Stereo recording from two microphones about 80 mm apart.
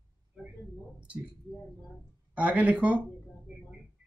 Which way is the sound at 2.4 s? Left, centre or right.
Centre.